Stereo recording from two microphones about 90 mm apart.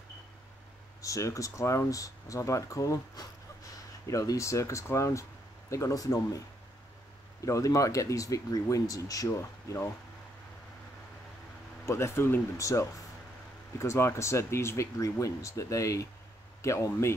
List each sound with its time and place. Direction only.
1.0 s speech: 35° left (ahead or behind)
7.4 s speech: 35° left (ahead or behind)
11.8 s speech: 30° left (ahead or behind)